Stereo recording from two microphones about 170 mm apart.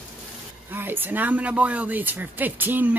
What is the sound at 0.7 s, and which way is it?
Speech, 10° right (ahead or behind).